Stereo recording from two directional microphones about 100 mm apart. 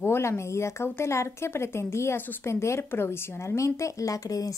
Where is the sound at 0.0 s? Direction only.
25° left (ahead or behind).